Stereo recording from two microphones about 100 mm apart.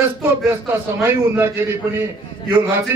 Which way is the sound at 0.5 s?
25° right (ahead or behind).